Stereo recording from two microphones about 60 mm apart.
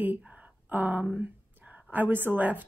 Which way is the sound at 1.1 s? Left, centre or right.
Right.